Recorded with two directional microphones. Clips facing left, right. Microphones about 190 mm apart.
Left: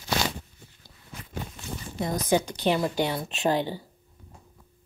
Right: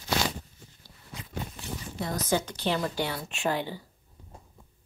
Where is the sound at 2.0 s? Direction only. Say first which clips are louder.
Left 4 dB; 15° left (ahead or behind).